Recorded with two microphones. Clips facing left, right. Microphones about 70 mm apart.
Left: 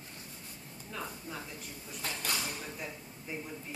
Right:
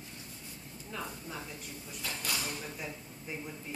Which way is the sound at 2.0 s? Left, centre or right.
Left.